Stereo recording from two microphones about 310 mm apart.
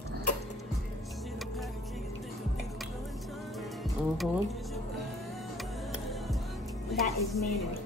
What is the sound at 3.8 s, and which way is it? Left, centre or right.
Speech, centre.